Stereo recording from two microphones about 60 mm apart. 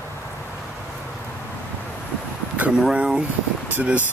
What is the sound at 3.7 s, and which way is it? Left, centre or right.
Speech, right.